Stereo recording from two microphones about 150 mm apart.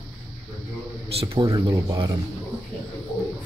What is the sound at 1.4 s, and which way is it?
Speech, 20° right (ahead or behind).